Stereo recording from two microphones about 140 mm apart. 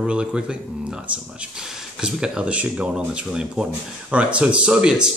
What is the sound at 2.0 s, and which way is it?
Speech, 5° right (ahead or behind).